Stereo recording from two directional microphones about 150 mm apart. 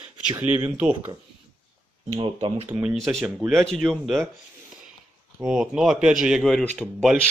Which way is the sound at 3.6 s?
5° left (ahead or behind).